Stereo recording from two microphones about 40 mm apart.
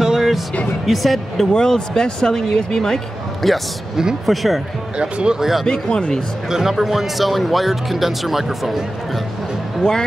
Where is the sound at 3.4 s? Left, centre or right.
Centre.